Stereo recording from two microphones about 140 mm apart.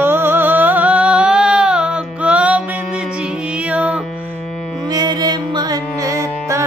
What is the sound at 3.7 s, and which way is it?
Music, 10° right (ahead or behind).